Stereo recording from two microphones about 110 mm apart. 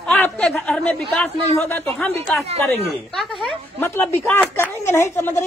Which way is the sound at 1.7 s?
20° left (ahead or behind).